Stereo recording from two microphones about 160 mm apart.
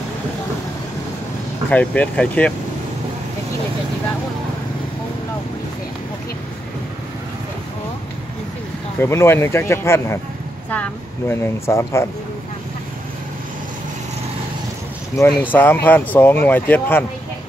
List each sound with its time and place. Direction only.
1.7 s speech: 10° left (ahead or behind)
9.0 s speech: 15° left (ahead or behind)
15.5 s speech: 10° left (ahead or behind)